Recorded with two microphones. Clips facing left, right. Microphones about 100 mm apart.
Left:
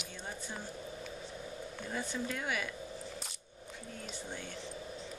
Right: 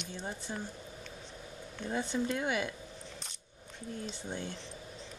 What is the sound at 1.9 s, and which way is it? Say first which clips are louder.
Speech: right 5 dB; 25° right (ahead or behind).